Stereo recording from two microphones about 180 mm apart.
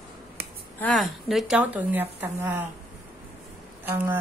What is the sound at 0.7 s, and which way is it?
A woman's voice, 5° left (ahead or behind).